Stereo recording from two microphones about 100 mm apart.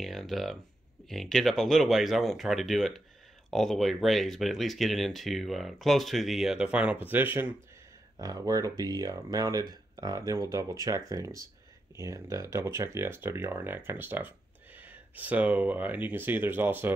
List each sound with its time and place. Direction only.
0.0 s speech: centre (ahead or behind); by 7.5 s 20° right (ahead or behind)
8.2 s speech: 35° right (ahead or behind); by 16.9 s 20° right (ahead or behind)